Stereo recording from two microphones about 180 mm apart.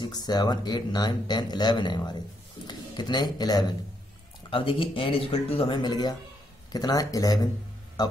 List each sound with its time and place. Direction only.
0.0 s speech: 20° left (ahead or behind)